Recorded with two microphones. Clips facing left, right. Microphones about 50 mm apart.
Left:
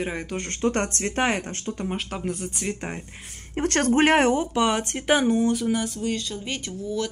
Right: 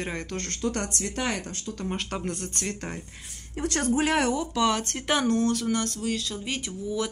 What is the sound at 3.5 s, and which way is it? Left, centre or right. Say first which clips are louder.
Speech: left 5 dB; left.